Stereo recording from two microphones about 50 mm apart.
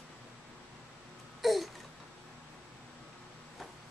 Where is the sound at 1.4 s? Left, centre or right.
Centre.